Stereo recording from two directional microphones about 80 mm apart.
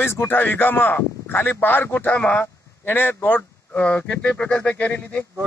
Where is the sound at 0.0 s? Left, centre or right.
Left.